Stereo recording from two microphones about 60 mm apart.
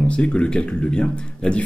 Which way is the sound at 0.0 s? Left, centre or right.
Centre.